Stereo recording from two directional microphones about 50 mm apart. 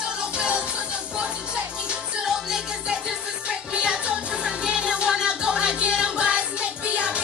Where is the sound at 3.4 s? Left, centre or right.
Centre.